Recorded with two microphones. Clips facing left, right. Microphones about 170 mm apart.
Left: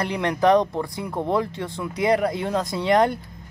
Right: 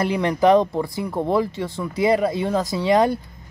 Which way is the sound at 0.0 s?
5° right (ahead or behind).